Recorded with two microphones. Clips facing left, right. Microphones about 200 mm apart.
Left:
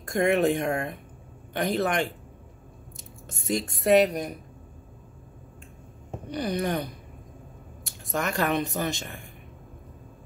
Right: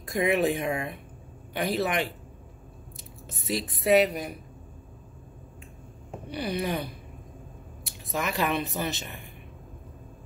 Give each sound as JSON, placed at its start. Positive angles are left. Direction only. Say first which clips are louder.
{"t": 0.0, "sound": "a woman's voice", "louder": "left 2 dB", "side_deg": 0}
{"t": 3.3, "sound": "a woman's voice", "louder": "left 2 dB", "side_deg": 0}
{"t": 6.2, "sound": "speech", "louder": "left 2 dB", "side_deg": -5}
{"t": 7.8, "sound": "a sound", "louder": "left 2 dB", "side_deg": 0}
{"t": 8.5, "sound": "speech", "louder": "left 2 dB", "side_deg": 45}